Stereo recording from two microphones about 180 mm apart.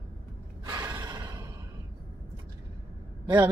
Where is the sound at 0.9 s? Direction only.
20° right (ahead or behind).